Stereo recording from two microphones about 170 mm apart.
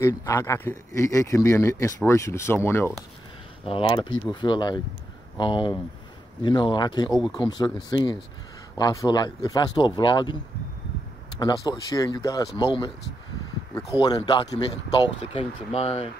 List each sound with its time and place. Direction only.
0.0 s speech: 15° left (ahead or behind)
3.6 s speech: 30° left (ahead or behind)
11.3 s speech: 20° left (ahead or behind)
13.7 s speech: 20° left (ahead or behind)
15.1 s speech: 35° left (ahead or behind)